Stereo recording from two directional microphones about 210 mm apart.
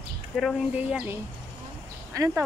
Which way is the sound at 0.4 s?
Centre (ahead or behind).